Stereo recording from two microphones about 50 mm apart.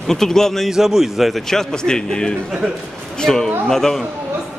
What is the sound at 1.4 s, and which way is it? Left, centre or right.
A man's voice, centre.